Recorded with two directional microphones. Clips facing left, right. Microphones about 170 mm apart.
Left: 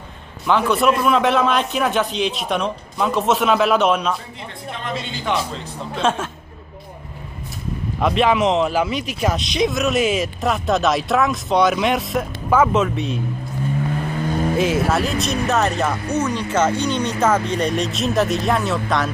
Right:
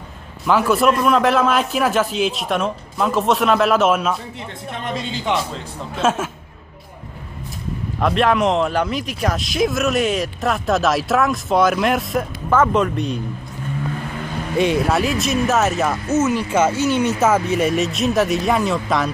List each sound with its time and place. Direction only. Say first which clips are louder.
0.5 s speech: right 1 dB; 5° right (ahead or behind)
5.9 s speech: right 1 dB; 5° right (ahead or behind)
8.0 s speech: even; centre (ahead or behind)
14.6 s speech: right 4 dB; centre (ahead or behind)